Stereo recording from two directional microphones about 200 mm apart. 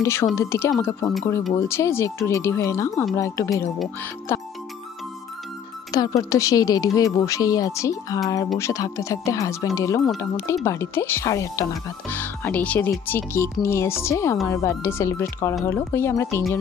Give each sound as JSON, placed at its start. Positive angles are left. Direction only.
{"t": 0.0, "sound": "speech", "side_deg": 15}
{"t": 5.9, "sound": "speech", "side_deg": 20}